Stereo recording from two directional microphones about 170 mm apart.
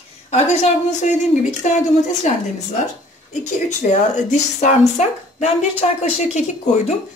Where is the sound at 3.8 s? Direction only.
45° left (ahead or behind).